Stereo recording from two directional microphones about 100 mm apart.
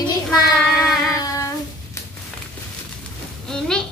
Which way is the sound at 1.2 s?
35° left (ahead or behind).